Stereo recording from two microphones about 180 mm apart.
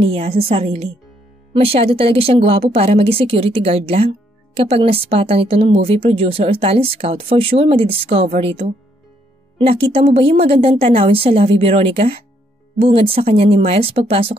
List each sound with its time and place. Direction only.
0.0 s speech: 30° right (ahead or behind)